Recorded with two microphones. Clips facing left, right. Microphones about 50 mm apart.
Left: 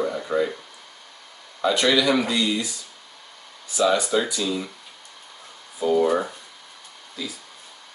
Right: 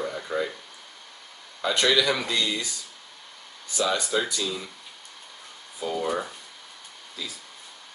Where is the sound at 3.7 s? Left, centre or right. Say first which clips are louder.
Left 5 dB; centre.